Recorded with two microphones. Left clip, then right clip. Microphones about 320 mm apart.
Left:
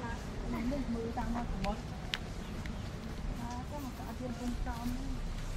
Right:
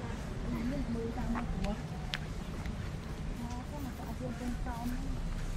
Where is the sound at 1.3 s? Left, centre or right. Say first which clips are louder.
Left 1 dB; centre.